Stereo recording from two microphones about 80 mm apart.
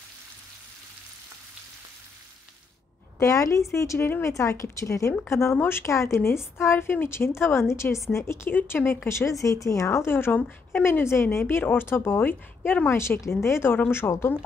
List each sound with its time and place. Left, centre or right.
3.2 s a woman's voice: left
8.5 s speech: left